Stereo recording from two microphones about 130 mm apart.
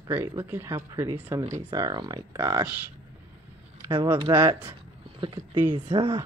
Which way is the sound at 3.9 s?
40° right (ahead or behind).